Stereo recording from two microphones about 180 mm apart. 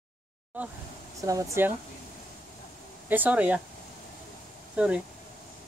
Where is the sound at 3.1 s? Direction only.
10° right (ahead or behind).